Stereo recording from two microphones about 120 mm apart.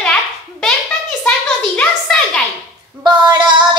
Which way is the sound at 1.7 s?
10° left (ahead or behind).